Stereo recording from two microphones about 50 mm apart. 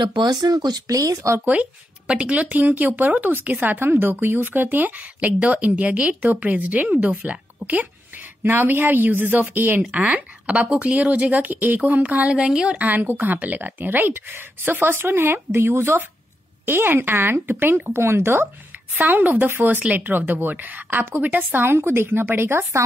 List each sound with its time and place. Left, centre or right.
0.9 s speech: right
1.4 s speech: right
8.5 s speech: right
9.8 s speech: right
12.7 s speech: right
17.9 s speech: right
18.9 s speech: right
22.6 s a woman's voice: right